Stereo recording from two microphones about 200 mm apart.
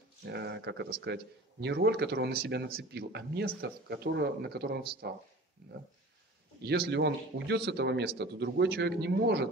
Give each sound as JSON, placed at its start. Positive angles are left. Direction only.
{"t": 0.2, "sound": "speech", "side_deg": -55}
{"t": 6.6, "sound": "speech", "side_deg": -55}